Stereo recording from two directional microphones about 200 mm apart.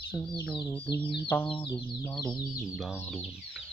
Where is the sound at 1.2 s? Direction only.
10° left (ahead or behind).